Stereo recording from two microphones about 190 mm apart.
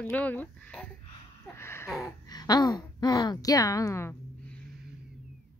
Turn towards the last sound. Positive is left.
turn(degrees=10)  # may be behind; listen again after turning